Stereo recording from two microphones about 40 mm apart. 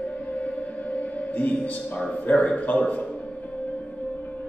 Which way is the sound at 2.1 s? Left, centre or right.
Left.